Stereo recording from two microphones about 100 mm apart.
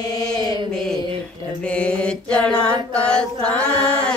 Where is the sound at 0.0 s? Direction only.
40° left (ahead or behind).